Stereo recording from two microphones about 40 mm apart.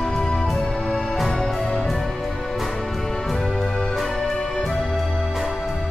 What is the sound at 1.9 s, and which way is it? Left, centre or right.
Music, centre.